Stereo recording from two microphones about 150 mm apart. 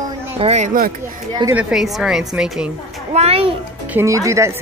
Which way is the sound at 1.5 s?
5° right (ahead or behind).